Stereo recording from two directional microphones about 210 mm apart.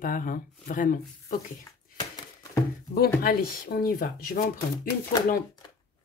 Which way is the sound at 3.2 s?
45° left (ahead or behind).